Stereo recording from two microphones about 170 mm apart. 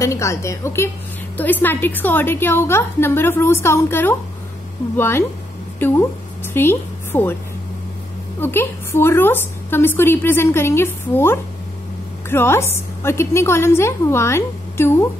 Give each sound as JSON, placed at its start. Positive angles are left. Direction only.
{"t": 0.0, "sound": "a woman's voice", "side_deg": 20}
{"t": 8.4, "sound": "a woman's voice", "side_deg": 15}